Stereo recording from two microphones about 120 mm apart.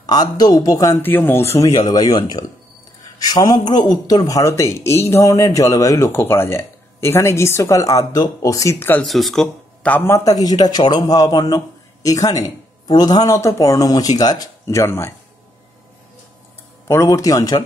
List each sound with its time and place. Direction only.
0.0 s a man's voice: 35° left (ahead or behind)
1.0 s speech: 15° left (ahead or behind)
1.8 s a man's voice: 35° left (ahead or behind); by 9.0 s 20° left (ahead or behind)
9.0 s speech: centre (ahead or behind)
9.9 s a man's voice: 20° left (ahead or behind)
16.8 s speech: 25° left (ahead or behind)